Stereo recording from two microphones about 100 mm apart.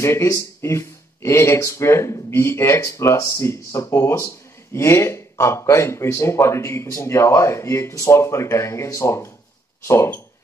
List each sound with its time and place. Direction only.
0.0 s speech: 30° left (ahead or behind)